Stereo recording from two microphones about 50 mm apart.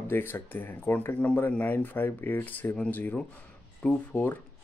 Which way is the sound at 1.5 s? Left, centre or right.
Left.